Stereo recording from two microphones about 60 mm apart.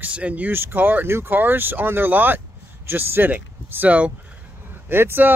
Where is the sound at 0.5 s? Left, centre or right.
Right.